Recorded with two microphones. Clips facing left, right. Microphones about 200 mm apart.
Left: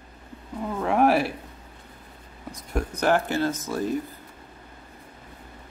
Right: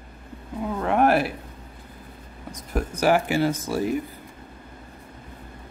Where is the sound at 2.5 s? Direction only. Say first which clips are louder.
Right 1 dB; 5° right (ahead or behind).